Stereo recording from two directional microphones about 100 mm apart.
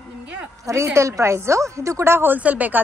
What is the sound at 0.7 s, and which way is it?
A woman's voice, 30° right (ahead or behind).